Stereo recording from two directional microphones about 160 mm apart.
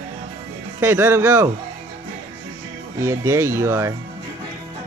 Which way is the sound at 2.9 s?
15° right (ahead or behind).